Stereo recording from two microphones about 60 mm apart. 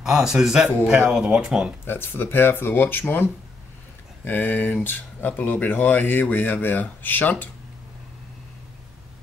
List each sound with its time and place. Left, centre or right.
0.0 s a man's voice: centre
1.9 s speech: left